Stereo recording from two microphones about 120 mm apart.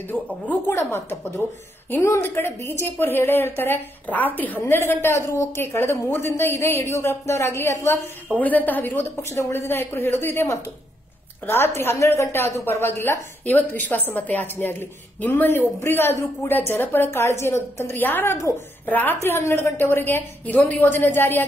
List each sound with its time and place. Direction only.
0.1 s a woman's voice: 20° left (ahead or behind)